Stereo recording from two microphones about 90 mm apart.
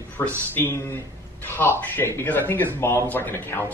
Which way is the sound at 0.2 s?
25° left (ahead or behind).